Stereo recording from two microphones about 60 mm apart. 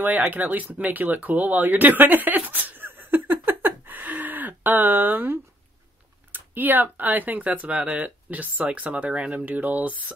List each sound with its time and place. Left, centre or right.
0.0 s speech: right